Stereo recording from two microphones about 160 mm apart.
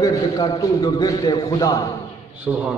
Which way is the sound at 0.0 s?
25° left (ahead or behind).